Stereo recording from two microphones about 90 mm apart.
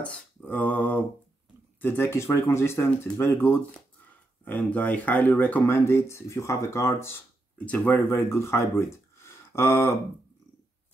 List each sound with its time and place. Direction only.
0.0 s a sound: 15° left (ahead or behind)
1.8 s speech: 25° left (ahead or behind)
7.5 s speech: 15° left (ahead or behind)